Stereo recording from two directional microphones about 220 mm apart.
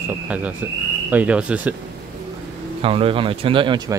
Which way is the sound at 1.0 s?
5° right (ahead or behind).